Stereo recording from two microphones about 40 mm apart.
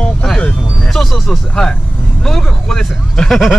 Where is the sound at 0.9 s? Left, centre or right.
Centre.